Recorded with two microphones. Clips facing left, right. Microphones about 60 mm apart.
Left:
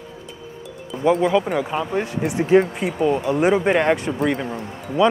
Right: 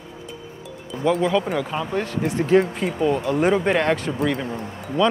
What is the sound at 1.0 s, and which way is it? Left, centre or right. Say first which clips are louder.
Speech: left 2 dB; centre.